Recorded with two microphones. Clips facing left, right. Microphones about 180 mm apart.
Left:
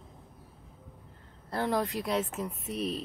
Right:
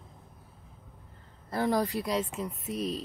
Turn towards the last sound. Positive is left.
turn(degrees=0)  # may be behind; listen again after turning